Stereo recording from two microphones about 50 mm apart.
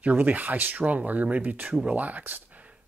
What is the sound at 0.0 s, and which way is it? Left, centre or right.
Speech, right.